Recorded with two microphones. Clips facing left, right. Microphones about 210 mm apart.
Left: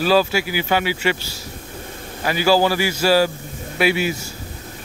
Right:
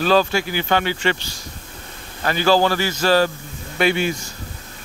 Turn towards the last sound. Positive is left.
turn(degrees=5)  # may be behind; listen again after turning